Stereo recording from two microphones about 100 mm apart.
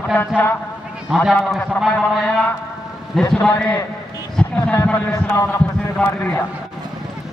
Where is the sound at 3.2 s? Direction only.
10° left (ahead or behind).